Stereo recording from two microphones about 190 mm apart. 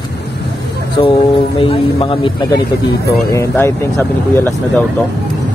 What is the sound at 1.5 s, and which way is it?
A man's voice, 30° left (ahead or behind).